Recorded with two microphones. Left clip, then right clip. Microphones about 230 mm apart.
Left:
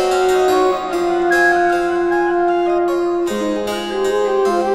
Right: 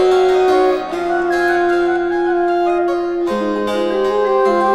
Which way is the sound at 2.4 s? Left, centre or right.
Right.